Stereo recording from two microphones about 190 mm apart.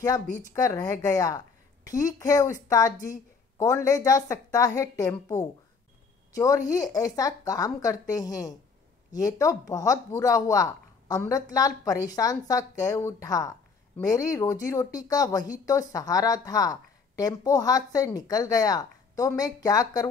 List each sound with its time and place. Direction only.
0.0 s a woman's voice: 20° left (ahead or behind)